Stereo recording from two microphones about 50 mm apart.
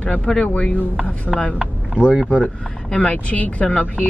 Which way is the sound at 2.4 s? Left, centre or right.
Left.